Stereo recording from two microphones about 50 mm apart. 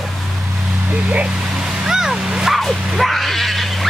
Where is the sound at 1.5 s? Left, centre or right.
Centre.